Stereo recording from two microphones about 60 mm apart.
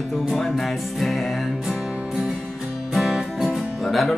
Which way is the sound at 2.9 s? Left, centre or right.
Centre.